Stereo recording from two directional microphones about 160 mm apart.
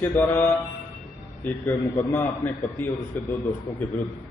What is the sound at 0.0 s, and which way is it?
A man's voice, 15° left (ahead or behind).